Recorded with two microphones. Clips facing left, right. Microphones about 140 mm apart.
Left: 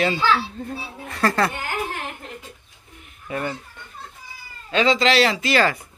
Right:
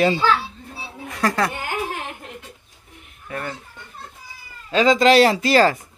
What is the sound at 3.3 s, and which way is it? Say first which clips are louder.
Speech: left 3 dB; 10° left (ahead or behind).